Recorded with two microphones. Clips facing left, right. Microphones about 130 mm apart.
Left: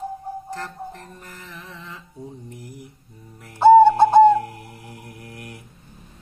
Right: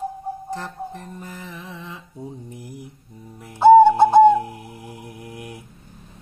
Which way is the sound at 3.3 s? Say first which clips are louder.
Right 1 dB; 15° right (ahead or behind).